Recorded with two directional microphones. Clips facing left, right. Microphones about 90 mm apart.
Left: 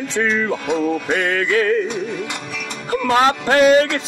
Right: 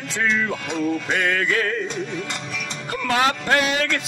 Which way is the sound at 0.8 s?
35° left (ahead or behind).